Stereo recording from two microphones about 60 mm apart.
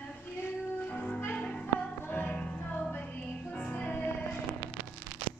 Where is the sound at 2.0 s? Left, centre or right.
Left.